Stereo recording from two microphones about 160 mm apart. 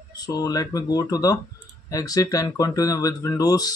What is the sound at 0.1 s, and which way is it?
Speech, 25° left (ahead or behind).